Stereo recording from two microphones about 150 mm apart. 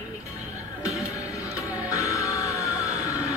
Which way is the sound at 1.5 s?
20° left (ahead or behind).